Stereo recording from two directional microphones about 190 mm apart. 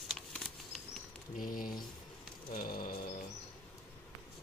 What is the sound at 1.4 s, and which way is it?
Speech, 45° left (ahead or behind).